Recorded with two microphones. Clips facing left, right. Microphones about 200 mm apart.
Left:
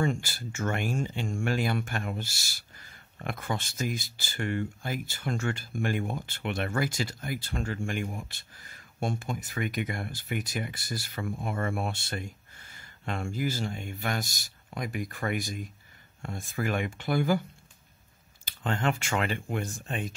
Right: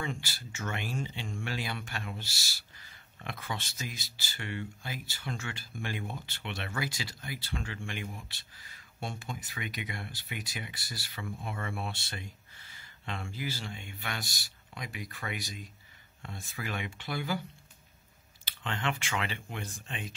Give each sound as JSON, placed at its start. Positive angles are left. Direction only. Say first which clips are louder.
{"t": 0.0, "sound": "speech", "louder": "left 9 dB", "side_deg": 45}
{"t": 18.4, "sound": "speech", "louder": "left 6 dB", "side_deg": 45}